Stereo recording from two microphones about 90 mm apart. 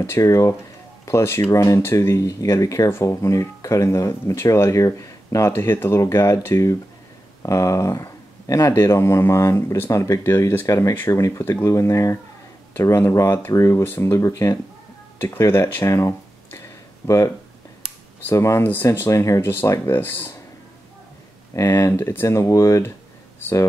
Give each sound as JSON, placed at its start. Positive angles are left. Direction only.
{"t": 0.0, "sound": "speech", "side_deg": 35}
{"t": 10.7, "sound": "speech", "side_deg": 35}
{"t": 18.3, "sound": "speech", "side_deg": 30}
{"t": 21.5, "sound": "speech", "side_deg": 35}